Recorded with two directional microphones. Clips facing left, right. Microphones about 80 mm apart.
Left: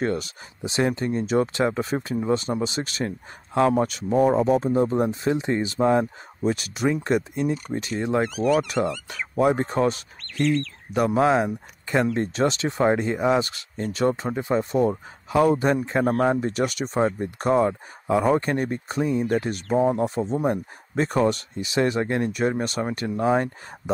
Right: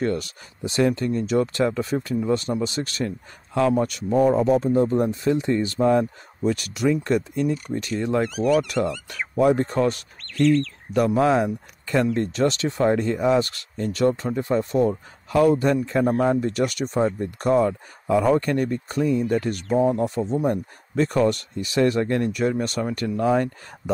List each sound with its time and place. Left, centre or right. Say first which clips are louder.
0.1 s speech: right 1 dB; left
10.4 s speech: right 4 dB; centre
10.9 s speech: even; centre; by 13.0 s left
13.0 s speech: right 1 dB; left